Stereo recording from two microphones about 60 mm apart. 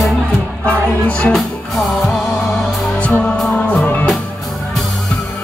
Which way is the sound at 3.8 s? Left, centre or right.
Left.